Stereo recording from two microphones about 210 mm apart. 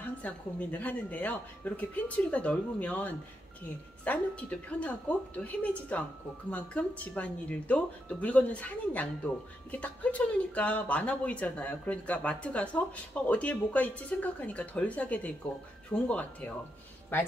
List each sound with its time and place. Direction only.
0.0 s a woman's voice: 5° left (ahead or behind)